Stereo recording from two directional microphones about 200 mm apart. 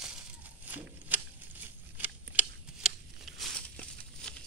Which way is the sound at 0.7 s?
10° right (ahead or behind).